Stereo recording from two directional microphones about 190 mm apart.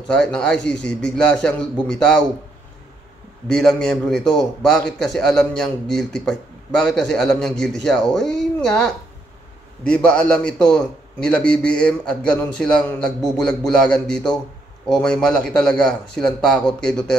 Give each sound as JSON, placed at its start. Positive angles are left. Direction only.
{"t": 0.1, "sound": "a man's voice", "side_deg": 5}
{"t": 3.4, "sound": "a man's voice", "side_deg": 5}